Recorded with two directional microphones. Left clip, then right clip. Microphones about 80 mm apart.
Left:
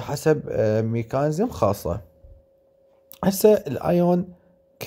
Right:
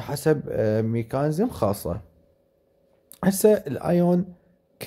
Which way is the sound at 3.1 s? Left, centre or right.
Left.